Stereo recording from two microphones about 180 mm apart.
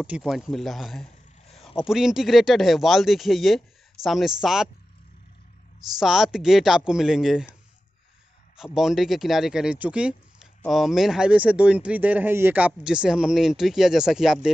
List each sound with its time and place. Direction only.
0.0 s speech: 5° right (ahead or behind)
1.5 s zipper: 35° left (ahead or behind)
1.8 s speech: 5° right (ahead or behind)
5.9 s speech: centre (ahead or behind)
8.7 s speech: centre (ahead or behind)